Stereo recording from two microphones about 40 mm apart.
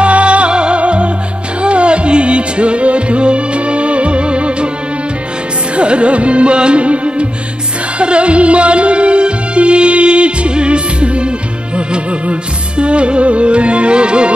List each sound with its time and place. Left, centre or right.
0.0 s music: right
5.8 s music: right